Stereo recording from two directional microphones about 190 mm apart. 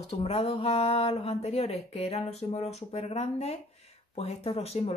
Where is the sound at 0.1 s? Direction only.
30° left (ahead or behind).